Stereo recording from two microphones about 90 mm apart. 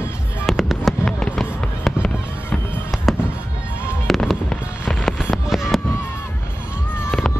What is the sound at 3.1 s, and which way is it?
Fireworks, centre (ahead or behind).